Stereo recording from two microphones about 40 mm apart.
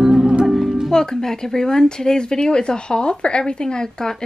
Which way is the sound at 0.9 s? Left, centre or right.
Centre.